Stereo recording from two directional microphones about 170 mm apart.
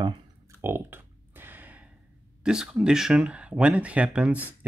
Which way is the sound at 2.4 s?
5° right (ahead or behind).